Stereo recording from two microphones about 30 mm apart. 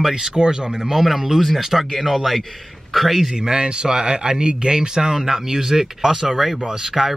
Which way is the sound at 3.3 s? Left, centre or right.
Right.